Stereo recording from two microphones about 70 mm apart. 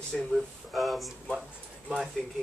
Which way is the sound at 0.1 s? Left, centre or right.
Centre.